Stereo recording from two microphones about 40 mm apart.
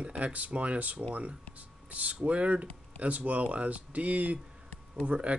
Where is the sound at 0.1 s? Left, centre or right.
Right.